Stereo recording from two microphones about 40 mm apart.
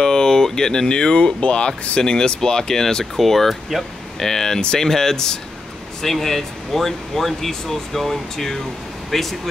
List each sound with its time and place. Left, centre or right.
0.0 s speech: centre